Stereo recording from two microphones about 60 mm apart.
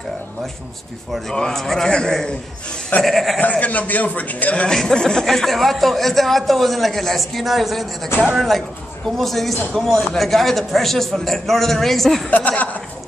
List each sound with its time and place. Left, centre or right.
1.3 s a man's voice: centre
3.3 s a man's voice: left
4.6 s speech: centre
12.3 s a man's voice: left